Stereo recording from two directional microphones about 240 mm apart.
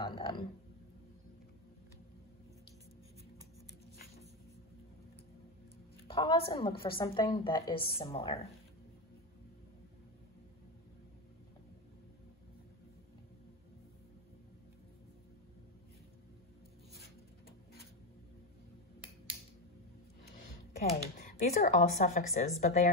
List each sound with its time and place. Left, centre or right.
0.0 s speech: centre
6.1 s a woman's voice: left
21.2 s a woman's voice: left